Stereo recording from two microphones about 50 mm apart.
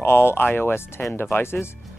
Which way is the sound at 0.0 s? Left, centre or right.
Left.